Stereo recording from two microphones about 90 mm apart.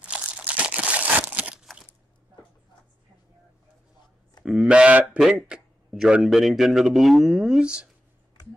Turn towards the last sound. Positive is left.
turn(degrees=-10)  # may be behind; listen again after turning